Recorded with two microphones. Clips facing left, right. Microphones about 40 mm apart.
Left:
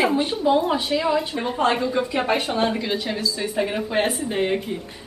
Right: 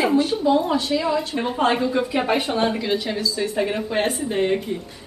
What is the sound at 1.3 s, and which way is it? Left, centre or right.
A woman's voice, centre.